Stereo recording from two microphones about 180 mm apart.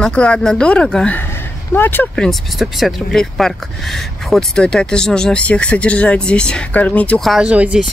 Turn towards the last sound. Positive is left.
turn(degrees=-5)  # may be behind; listen again after turning